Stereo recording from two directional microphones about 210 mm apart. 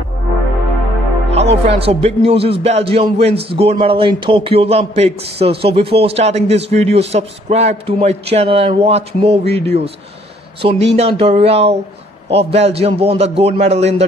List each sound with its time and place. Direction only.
1.3 s speech: 30° right (ahead or behind)